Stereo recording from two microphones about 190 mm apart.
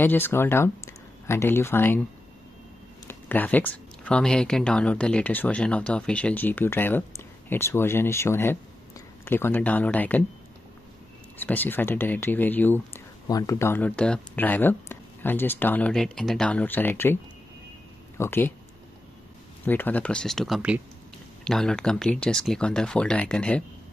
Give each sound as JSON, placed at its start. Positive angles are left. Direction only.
{"t": 0.0, "sound": "speech", "side_deg": 10}
{"t": 3.1, "sound": "speech", "side_deg": 10}
{"t": 11.3, "sound": "speech", "side_deg": 10}
{"t": 19.6, "sound": "speech", "side_deg": 10}